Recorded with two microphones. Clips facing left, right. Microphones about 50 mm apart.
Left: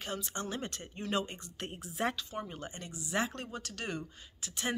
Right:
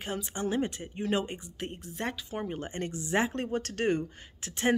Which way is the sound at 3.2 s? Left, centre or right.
Right.